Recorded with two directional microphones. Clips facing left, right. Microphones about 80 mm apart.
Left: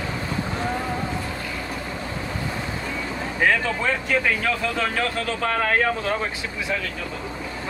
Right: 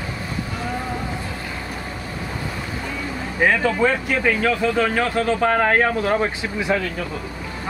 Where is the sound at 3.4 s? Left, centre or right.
Centre; by 6.2 s right.